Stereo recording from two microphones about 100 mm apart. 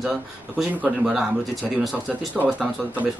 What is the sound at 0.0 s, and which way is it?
A man's voice, 5° right (ahead or behind).